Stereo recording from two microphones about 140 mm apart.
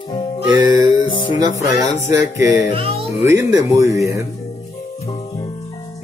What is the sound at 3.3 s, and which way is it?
Speech, 20° right (ahead or behind).